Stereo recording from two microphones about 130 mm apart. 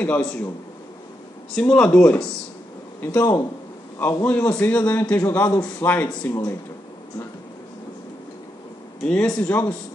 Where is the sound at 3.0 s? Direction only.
30° left (ahead or behind).